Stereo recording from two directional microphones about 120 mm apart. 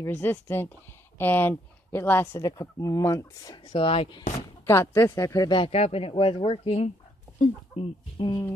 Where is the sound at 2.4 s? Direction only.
30° left (ahead or behind).